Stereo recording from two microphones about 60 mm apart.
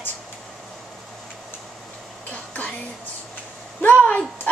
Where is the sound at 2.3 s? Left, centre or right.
Left.